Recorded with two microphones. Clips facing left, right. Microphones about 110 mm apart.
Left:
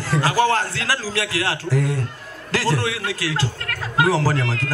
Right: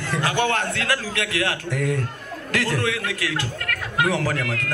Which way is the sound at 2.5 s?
30° left (ahead or behind).